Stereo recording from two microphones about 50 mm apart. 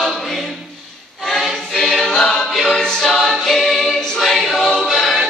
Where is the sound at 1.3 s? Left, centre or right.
Centre.